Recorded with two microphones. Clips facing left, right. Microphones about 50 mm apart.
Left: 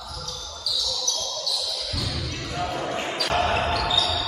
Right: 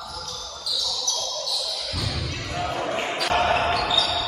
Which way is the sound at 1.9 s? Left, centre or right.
Centre.